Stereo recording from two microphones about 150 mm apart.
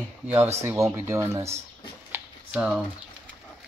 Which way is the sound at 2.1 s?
5° right (ahead or behind).